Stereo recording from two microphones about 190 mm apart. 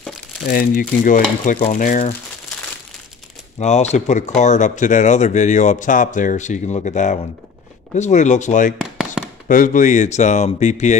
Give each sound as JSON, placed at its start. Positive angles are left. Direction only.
{"t": 0.5, "sound": "speech", "side_deg": 50}
{"t": 3.5, "sound": "speech", "side_deg": 35}